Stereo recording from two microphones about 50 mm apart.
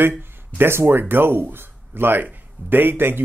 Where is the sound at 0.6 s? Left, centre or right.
Right.